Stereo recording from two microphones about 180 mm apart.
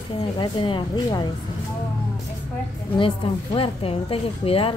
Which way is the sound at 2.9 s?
30° left (ahead or behind).